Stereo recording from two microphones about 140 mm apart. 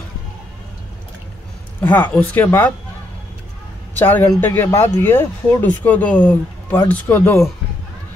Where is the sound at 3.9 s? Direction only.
15° left (ahead or behind).